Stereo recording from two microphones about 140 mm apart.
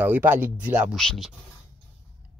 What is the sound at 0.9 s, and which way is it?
Speech, centre (ahead or behind).